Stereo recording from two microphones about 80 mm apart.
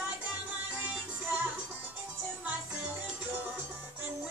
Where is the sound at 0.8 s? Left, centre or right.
Right.